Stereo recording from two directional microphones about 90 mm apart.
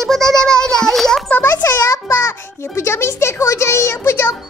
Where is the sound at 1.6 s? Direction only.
35° left (ahead or behind).